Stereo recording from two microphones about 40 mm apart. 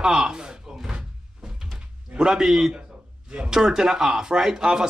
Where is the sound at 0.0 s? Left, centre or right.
Centre.